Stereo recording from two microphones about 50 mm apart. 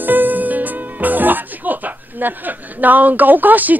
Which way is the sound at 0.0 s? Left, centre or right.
Right.